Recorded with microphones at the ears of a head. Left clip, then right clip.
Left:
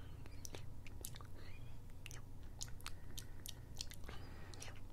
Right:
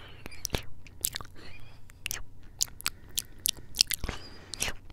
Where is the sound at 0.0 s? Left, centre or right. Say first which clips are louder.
Right 16 dB; right.